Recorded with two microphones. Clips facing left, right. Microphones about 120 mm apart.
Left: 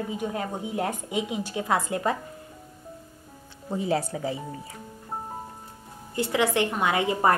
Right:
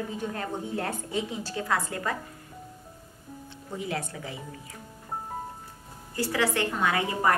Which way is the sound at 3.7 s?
35° left (ahead or behind).